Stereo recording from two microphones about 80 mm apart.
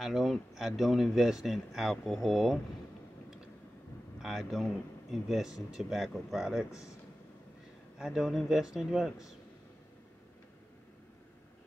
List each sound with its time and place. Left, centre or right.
0.0 s speech: centre
4.2 s speech: centre
6.7 s speech: left
8.0 s speech: centre